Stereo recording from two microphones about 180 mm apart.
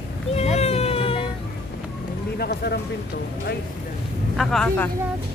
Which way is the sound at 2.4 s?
65° left (ahead or behind).